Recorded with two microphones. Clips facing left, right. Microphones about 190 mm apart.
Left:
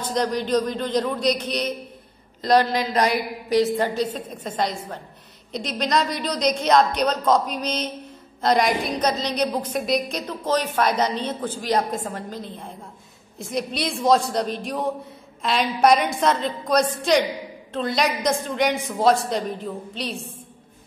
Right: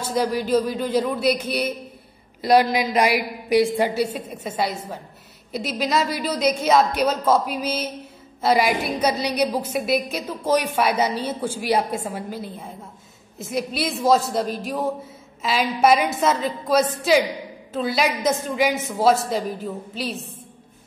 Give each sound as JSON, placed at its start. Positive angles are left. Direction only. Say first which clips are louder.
{"t": 0.0, "sound": "a woman's voice", "louder": "right 1 dB", "side_deg": -5}